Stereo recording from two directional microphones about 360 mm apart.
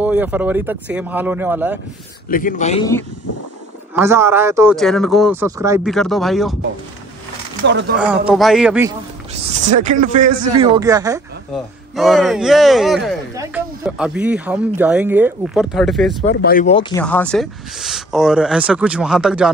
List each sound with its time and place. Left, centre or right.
0.0 s speech: centre
2.2 s a man's voice: left
3.9 s speech: centre
7.6 s speech: right
8.3 s speech: centre
9.3 s speech: centre
16.3 s a man's voice: left
17.0 s speech: centre